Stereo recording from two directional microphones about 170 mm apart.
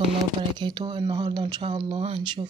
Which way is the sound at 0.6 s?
25° right (ahead or behind).